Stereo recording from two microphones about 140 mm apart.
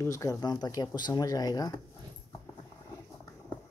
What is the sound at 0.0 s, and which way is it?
Speech, 25° left (ahead or behind).